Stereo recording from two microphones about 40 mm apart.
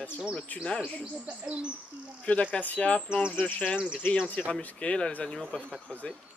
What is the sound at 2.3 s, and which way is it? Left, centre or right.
Speech, left.